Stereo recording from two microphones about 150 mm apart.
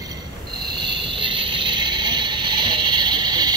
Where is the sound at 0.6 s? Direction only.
30° right (ahead or behind).